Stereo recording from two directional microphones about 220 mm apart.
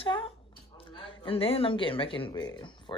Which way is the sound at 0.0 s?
25° left (ahead or behind).